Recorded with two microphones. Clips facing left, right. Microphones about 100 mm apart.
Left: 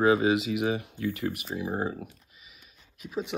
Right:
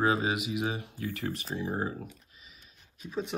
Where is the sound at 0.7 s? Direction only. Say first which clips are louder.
Left 6 dB; 25° right (ahead or behind).